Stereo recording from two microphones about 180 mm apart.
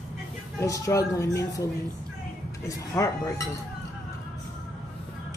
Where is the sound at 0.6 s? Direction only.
15° left (ahead or behind).